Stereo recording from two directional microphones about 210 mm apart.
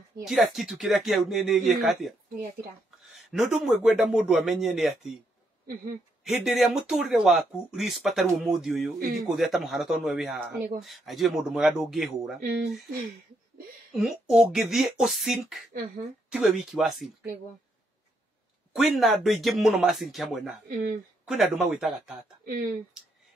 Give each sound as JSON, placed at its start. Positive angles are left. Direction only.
{"t": 0.2, "sound": "speech", "side_deg": 0}
{"t": 6.2, "sound": "speech", "side_deg": 0}
{"t": 13.9, "sound": "speech", "side_deg": 0}
{"t": 18.7, "sound": "speech", "side_deg": 0}
{"t": 20.6, "sound": "speech", "side_deg": -45}
{"t": 21.3, "sound": "speech", "side_deg": 0}
{"t": 22.4, "sound": "speech", "side_deg": -45}